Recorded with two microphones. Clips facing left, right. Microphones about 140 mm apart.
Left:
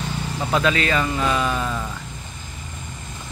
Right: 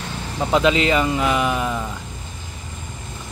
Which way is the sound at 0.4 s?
20° right (ahead or behind).